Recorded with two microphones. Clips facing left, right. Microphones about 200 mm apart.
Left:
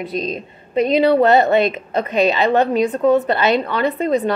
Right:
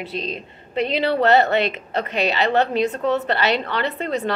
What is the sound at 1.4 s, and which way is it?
A woman's voice, 20° left (ahead or behind).